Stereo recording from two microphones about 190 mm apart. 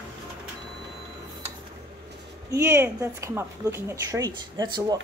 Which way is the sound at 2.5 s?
15° right (ahead or behind).